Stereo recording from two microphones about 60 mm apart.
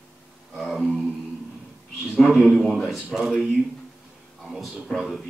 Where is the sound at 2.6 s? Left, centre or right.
Centre.